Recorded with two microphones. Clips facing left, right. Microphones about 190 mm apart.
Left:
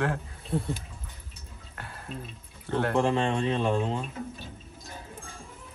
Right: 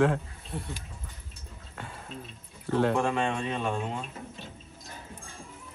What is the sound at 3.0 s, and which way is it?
Speech, 25° left (ahead or behind).